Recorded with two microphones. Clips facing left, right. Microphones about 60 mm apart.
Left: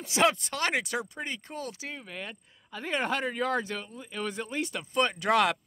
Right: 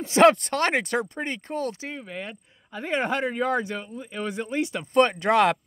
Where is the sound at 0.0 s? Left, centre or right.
Right.